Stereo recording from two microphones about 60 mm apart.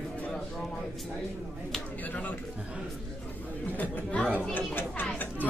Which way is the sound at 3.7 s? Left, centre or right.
Left.